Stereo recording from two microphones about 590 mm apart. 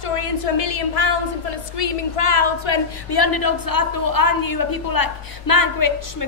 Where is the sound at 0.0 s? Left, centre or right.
Left.